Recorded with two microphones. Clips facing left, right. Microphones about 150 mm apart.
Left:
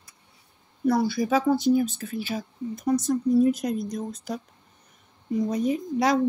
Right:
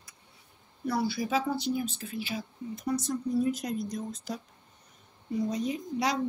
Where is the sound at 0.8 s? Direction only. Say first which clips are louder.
Left 7 dB; 45° left (ahead or behind).